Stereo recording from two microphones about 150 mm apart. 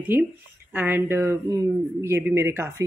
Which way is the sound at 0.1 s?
15° right (ahead or behind).